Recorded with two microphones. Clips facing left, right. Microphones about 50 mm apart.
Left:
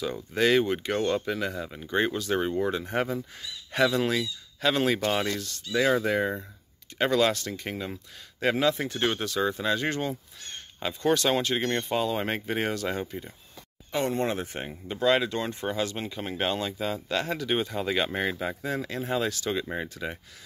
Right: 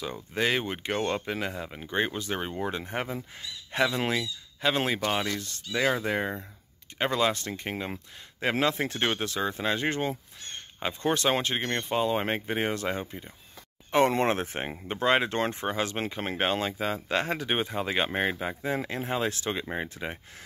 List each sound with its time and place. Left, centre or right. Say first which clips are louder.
0.0 s speech: left 3 dB; centre
7.4 s speech: even; right
9.0 s speech: left 3 dB; right
14.0 s speech: right 3 dB; right; by 18.8 s centre
18.8 s speech: left 1 dB; right